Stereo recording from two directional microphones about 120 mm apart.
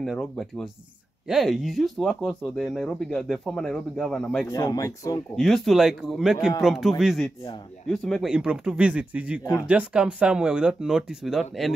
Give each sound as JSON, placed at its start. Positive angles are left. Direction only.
{"t": 0.0, "sound": "speech", "side_deg": 0}
{"t": 4.5, "sound": "speech", "side_deg": 30}
{"t": 5.3, "sound": "speech", "side_deg": 5}
{"t": 9.4, "sound": "speech", "side_deg": 25}
{"t": 9.7, "sound": "speech", "side_deg": -10}